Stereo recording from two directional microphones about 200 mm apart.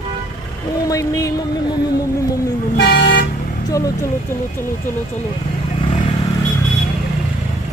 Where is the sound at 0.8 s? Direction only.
15° left (ahead or behind).